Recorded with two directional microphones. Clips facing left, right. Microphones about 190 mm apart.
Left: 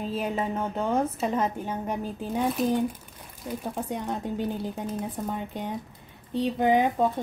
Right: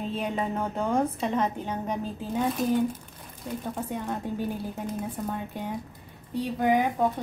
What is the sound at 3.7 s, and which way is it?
A woman's voice, 15° left (ahead or behind).